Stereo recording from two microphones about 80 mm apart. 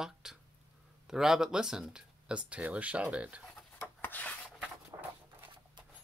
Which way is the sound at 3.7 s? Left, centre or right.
Left.